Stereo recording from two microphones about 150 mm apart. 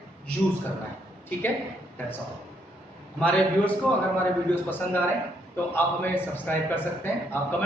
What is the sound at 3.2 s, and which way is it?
A man's voice, 10° left (ahead or behind).